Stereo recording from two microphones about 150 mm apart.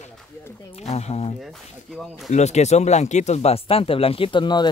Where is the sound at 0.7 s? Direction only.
45° left (ahead or behind).